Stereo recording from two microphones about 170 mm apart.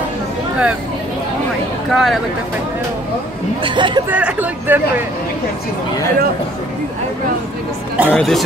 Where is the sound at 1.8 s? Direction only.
Centre (ahead or behind).